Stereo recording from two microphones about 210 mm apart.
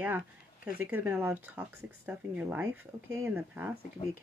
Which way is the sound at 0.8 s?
5° right (ahead or behind).